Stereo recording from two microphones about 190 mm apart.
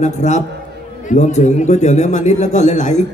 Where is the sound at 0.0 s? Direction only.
40° left (ahead or behind).